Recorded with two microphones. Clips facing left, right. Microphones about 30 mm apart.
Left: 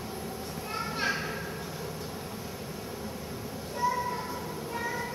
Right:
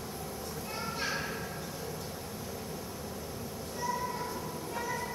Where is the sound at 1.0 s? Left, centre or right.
Centre.